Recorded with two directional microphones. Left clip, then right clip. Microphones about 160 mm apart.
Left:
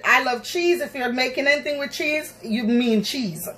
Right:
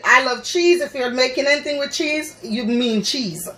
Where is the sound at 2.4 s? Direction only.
20° right (ahead or behind).